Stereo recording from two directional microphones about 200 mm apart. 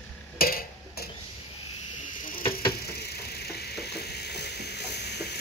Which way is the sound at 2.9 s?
55° left (ahead or behind).